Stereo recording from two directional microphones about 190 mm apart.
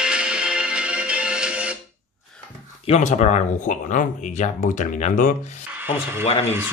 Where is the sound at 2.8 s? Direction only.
35° left (ahead or behind).